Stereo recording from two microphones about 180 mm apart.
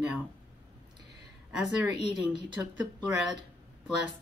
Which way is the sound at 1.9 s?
25° right (ahead or behind).